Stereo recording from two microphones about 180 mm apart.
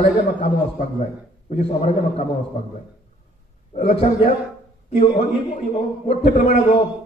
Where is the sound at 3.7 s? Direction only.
35° left (ahead or behind).